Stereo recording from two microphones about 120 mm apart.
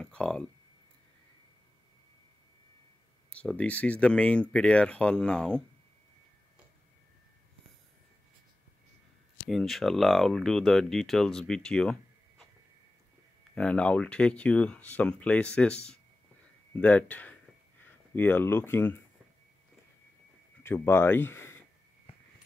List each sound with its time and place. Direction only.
0.0 s a sound: 5° left (ahead or behind)
3.3 s speech: 10° left (ahead or behind)
9.5 s speech: centre (ahead or behind)
13.6 s speech: 10° left (ahead or behind)
20.6 s speech: 20° left (ahead or behind)